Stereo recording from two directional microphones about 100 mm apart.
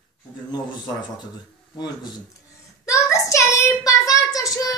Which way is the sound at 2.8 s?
30° left (ahead or behind).